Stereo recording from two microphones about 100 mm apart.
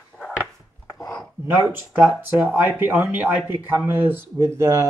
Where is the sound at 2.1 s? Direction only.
20° right (ahead or behind).